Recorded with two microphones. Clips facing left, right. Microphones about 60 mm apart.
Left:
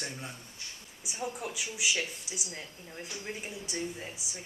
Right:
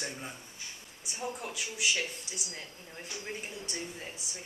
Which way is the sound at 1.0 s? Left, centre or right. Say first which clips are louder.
Left 1 dB; centre.